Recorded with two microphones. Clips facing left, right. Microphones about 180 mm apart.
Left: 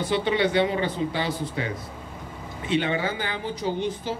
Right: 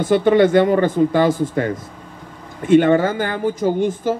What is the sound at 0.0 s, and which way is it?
Speech, 50° right (ahead or behind).